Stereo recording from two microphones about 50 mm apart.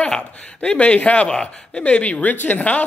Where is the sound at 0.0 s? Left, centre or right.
Left.